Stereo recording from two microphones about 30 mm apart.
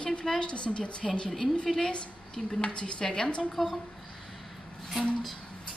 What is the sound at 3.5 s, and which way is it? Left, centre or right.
Speech, centre.